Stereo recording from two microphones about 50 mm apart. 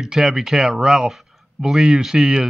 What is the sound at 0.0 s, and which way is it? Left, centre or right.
Speech, centre.